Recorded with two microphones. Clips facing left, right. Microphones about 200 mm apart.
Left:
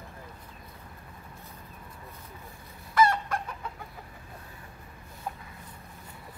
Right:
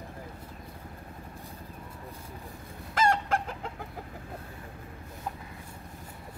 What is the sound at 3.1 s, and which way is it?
Chicken, 90° right.